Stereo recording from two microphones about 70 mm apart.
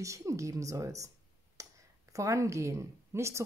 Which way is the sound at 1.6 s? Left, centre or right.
Right.